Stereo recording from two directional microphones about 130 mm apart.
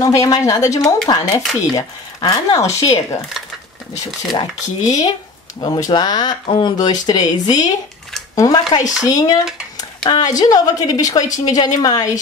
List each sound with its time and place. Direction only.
0.0 s a woman's voice: 25° left (ahead or behind)
4.3 s a woman's voice: 30° left (ahead or behind)